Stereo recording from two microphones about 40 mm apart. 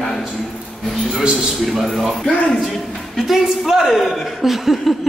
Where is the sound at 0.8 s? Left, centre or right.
Centre.